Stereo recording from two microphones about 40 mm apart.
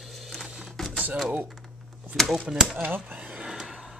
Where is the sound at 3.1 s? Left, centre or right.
Right.